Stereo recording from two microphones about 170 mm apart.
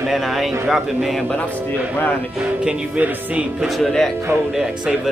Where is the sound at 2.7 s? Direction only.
10° right (ahead or behind).